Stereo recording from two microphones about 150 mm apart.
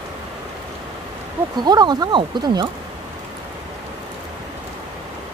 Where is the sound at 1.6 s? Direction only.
25° right (ahead or behind).